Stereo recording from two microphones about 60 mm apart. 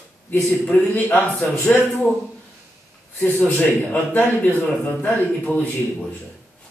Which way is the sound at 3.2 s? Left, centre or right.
Left.